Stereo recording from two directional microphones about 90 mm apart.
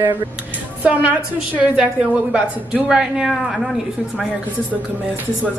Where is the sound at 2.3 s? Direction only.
10° right (ahead or behind).